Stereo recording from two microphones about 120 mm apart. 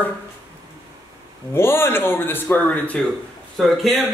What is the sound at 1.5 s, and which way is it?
A man's voice, 20° left (ahead or behind).